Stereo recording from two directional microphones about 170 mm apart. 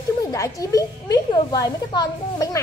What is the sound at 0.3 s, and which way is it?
A woman's voice, 20° left (ahead or behind).